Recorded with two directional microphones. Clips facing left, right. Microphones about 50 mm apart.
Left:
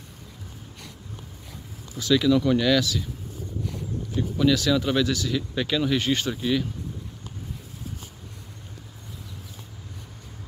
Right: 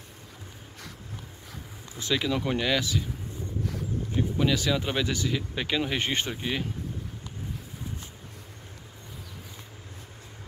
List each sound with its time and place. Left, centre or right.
2.0 s speech: right
4.1 s speech: right